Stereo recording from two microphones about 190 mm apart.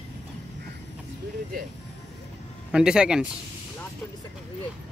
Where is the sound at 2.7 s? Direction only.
5° right (ahead or behind).